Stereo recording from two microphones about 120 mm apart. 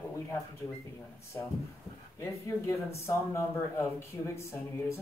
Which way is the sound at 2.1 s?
25° left (ahead or behind).